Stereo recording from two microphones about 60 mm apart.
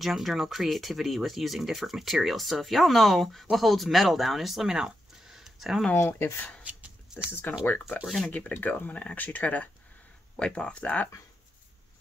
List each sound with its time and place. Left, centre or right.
0.0 s speech: centre
5.9 s speech: left
6.6 s a sound: centre
7.5 s speech: left
10.3 s speech: centre